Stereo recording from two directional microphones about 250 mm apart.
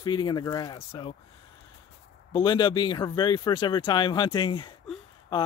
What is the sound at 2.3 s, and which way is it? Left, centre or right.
Speech, centre.